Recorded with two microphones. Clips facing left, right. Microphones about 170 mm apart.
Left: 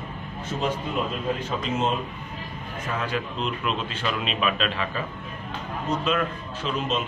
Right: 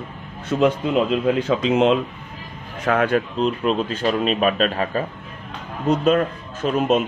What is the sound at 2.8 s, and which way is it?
Speech, 60° right (ahead or behind).